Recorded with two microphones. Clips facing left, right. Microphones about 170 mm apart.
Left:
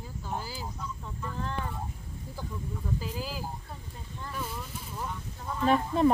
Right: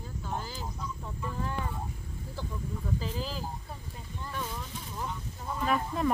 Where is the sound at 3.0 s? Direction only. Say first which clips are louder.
Even; 10° left (ahead or behind).